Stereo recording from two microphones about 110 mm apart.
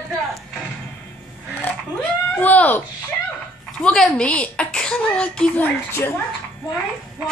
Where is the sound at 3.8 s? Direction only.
10° left (ahead or behind).